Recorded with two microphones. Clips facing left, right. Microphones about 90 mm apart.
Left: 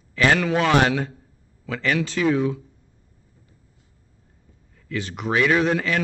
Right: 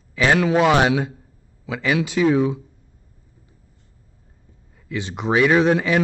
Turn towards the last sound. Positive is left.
turn(degrees=-15)  # may be behind; listen again after turning